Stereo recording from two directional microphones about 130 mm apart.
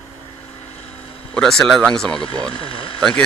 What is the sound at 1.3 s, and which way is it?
Speech, 5° left (ahead or behind).